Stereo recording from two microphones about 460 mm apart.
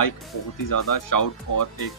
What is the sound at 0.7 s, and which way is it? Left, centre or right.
Speech, left.